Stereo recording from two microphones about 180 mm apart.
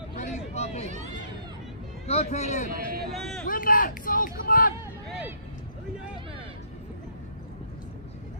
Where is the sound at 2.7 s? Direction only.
55° right (ahead or behind).